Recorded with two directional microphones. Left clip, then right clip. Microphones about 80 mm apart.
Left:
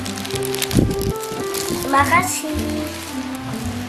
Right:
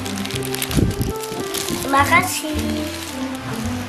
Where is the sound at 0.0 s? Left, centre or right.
Centre.